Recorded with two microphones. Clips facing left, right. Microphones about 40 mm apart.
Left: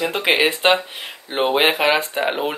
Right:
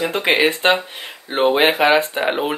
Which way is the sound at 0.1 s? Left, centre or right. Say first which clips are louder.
Right 2 dB; centre.